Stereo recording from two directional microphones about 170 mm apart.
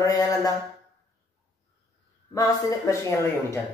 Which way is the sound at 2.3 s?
20° left (ahead or behind).